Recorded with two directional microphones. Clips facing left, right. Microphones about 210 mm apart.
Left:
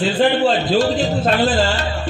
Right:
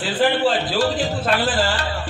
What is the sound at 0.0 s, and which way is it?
A man's voice, 25° left (ahead or behind).